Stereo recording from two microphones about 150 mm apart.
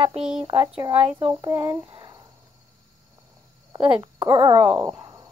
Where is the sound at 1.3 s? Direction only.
25° right (ahead or behind).